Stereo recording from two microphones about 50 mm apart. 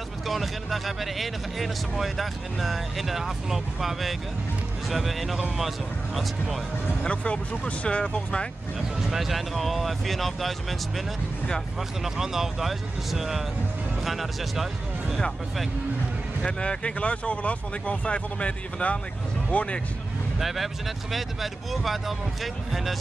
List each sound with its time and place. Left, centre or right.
0.3 s speech: centre
7.0 s speech: left
9.0 s speech: centre
12.0 s speech: centre
16.4 s speech: left
20.3 s speech: centre